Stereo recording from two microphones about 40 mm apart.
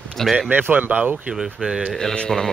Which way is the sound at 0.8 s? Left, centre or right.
Right.